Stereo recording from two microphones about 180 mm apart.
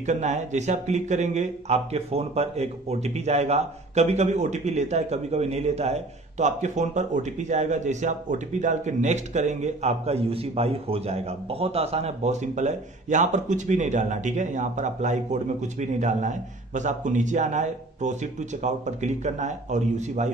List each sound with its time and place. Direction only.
0.0 s speech: 40° right (ahead or behind)